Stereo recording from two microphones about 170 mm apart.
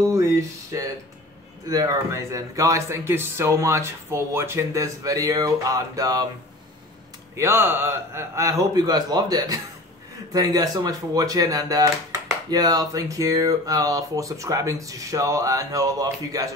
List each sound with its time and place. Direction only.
0.7 s speech: 20° right (ahead or behind)
7.3 s speech: 15° right (ahead or behind)